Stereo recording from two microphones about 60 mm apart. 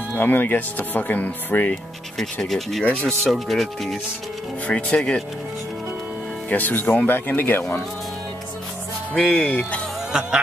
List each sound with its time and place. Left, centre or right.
0.1 s speech: left
2.4 s speech: centre
4.6 s speech: left
6.5 s speech: left
9.1 s speech: centre
10.1 s music: centre